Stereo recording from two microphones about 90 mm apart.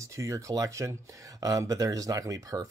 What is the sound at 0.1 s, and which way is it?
Speech, 35° right (ahead or behind).